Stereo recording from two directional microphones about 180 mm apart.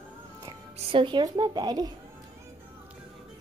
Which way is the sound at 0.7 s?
30° right (ahead or behind).